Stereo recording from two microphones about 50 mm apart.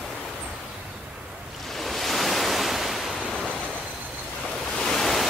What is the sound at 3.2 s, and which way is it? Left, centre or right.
Waves, centre.